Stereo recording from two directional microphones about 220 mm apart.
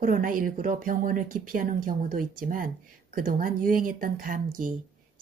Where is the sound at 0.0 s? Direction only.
40° right (ahead or behind).